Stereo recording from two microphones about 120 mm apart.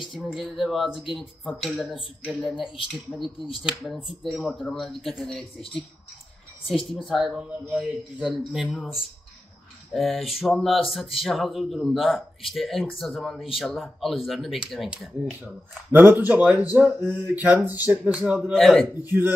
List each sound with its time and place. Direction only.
0.1 s a man's voice: centre (ahead or behind)
3.2 s speech: 45° left (ahead or behind)
3.6 s a man's voice: centre (ahead or behind)
7.1 s a man's voice: 5° right (ahead or behind)
15.9 s speech: 20° right (ahead or behind)
18.4 s a man's voice: 5° left (ahead or behind)
19.0 s speech: 20° right (ahead or behind)